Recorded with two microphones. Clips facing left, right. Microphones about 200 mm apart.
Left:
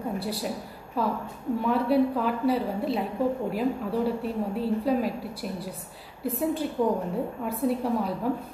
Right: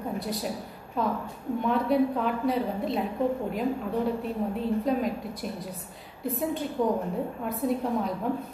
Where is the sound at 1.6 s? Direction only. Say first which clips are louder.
Left 1 dB; 5° left (ahead or behind).